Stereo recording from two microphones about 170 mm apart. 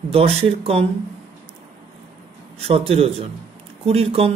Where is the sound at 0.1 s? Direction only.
35° right (ahead or behind).